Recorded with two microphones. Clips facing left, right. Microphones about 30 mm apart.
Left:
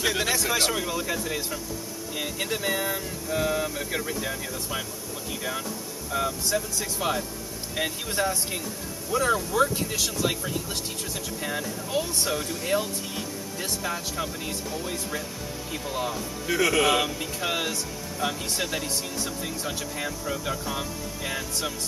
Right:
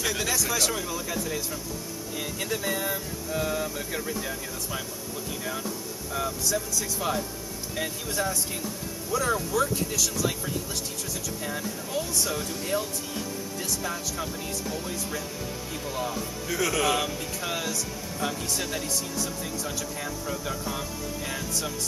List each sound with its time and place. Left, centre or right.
0.0 s speech: left
6.1 s speech: centre
11.4 s speech: left
12.1 s speech: left
13.6 s speech: centre
15.7 s speech: centre
16.4 s speech: left
19.6 s speech: left
20.2 s speech: centre